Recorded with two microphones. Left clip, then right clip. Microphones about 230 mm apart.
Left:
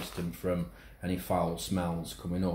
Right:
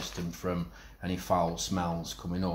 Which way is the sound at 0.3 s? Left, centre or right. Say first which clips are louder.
Left 3 dB; centre.